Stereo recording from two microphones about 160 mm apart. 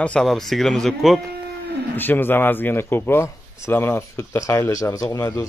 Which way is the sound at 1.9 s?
10° left (ahead or behind).